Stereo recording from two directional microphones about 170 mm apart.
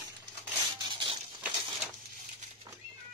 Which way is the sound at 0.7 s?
25° right (ahead or behind).